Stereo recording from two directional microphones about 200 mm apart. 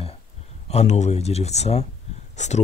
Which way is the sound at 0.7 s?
35° left (ahead or behind).